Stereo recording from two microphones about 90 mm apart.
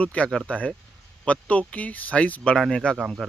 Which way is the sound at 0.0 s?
15° left (ahead or behind).